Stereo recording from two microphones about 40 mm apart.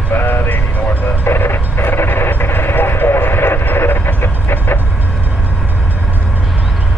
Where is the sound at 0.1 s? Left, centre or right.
Left.